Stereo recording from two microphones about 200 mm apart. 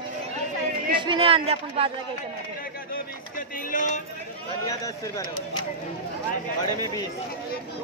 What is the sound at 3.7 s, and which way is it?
Speech, 40° left (ahead or behind).